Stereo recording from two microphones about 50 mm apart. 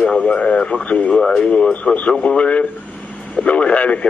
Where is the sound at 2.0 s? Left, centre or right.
Left.